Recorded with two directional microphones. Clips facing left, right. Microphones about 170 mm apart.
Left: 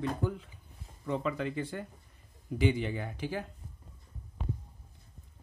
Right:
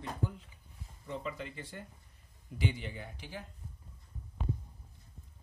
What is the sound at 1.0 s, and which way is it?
Speech, 90° left.